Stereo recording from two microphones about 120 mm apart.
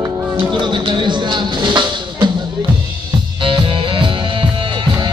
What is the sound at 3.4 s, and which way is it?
Music, 45° right (ahead or behind).